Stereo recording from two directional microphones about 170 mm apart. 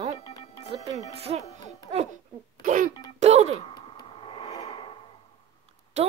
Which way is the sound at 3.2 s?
40° right (ahead or behind).